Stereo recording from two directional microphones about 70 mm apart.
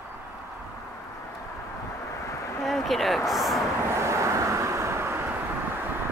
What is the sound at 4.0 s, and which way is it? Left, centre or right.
Vehicle, right.